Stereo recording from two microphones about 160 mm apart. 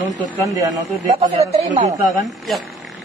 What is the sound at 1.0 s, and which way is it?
Speech, 45° right (ahead or behind).